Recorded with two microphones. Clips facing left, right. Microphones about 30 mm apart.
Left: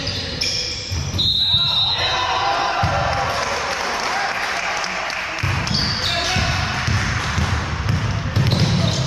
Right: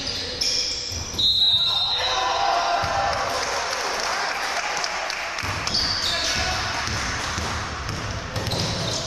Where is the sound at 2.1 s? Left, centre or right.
Left.